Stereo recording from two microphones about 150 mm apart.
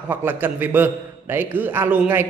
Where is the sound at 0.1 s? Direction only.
15° right (ahead or behind).